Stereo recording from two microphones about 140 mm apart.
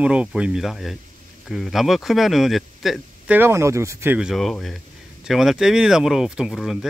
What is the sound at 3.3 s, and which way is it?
Speech, 15° right (ahead or behind).